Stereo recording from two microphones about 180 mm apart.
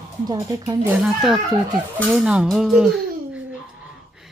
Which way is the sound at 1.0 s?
Centre (ahead or behind).